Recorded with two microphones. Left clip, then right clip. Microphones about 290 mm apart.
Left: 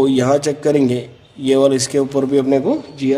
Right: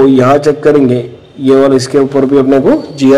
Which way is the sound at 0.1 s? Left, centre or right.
Left.